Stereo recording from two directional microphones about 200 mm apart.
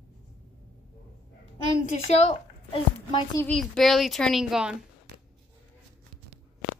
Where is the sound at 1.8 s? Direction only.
35° left (ahead or behind).